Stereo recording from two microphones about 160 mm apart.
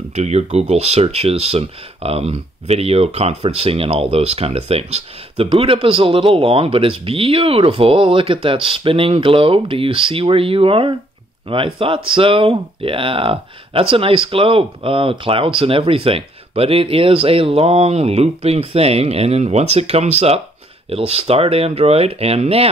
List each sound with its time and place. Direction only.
0.1 s speech: 45° right (ahead or behind)